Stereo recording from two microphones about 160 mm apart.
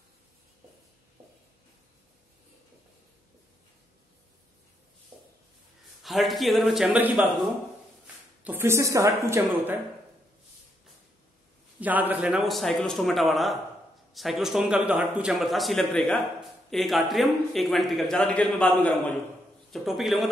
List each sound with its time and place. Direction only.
6.0 s a man's voice: centre (ahead or behind)
8.5 s speech: 15° right (ahead or behind)
11.8 s a man's voice: 10° right (ahead or behind)